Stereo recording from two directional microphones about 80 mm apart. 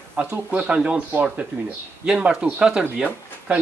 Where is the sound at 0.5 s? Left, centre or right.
Centre.